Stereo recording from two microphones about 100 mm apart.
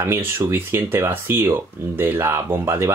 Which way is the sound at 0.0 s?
25° right (ahead or behind).